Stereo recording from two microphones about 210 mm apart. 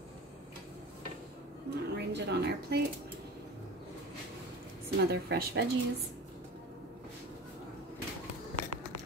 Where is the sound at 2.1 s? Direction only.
55° right (ahead or behind).